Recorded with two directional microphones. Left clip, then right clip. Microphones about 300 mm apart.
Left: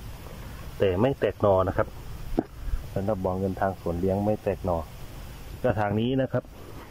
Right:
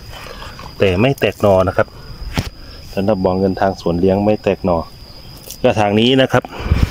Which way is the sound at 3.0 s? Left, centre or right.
Centre.